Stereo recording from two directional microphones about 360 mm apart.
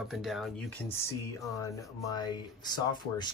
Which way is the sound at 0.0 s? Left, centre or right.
Centre.